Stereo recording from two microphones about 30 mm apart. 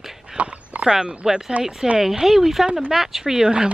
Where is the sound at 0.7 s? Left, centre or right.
Right.